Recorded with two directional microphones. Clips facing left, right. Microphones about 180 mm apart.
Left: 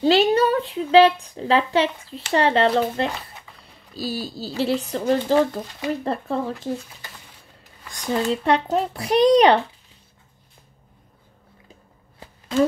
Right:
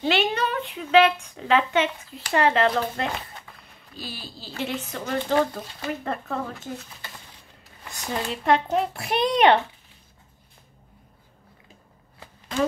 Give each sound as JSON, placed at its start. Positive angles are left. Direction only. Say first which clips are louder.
{"t": 0.0, "sound": "speech", "louder": "left 7 dB", "side_deg": 35}
{"t": 8.3, "sound": "speech", "louder": "even", "side_deg": 35}